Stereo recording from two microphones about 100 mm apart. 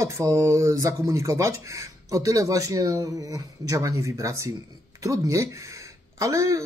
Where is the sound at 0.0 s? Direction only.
35° right (ahead or behind).